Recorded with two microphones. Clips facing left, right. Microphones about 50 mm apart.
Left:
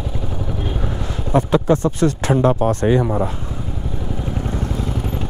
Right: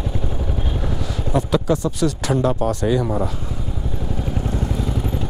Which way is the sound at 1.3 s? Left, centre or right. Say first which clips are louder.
Left 4 dB; left.